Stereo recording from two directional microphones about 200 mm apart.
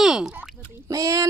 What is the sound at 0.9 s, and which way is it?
Speech, 15° right (ahead or behind).